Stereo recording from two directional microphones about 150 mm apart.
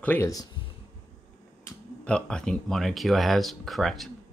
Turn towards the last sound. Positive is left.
turn(degrees=0)  # may be behind; listen again after turning